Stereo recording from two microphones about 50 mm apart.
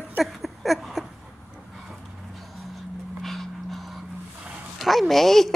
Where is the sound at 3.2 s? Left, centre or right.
Centre.